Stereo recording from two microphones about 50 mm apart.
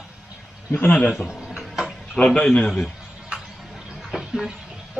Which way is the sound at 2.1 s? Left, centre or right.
Left.